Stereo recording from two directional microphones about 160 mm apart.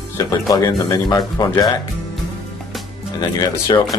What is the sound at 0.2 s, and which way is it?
Speech, 20° left (ahead or behind).